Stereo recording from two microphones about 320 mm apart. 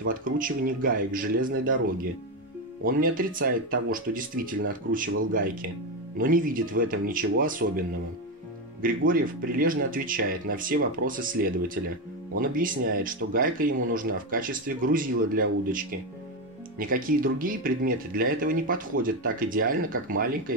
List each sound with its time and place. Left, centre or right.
0.0 s speech: right
2.8 s speech: right
8.8 s speech: right